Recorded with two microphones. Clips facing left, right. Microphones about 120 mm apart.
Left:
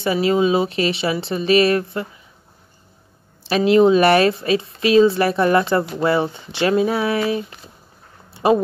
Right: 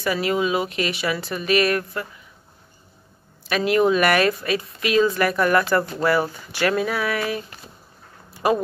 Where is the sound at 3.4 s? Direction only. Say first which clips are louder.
Left 5 dB; 30° left (ahead or behind).